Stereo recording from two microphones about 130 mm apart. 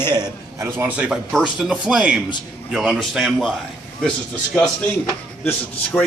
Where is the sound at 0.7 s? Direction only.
15° right (ahead or behind).